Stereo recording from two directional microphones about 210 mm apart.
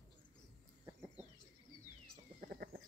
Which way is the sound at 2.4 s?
40° right (ahead or behind).